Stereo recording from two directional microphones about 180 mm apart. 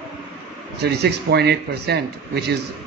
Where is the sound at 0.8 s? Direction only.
65° right (ahead or behind).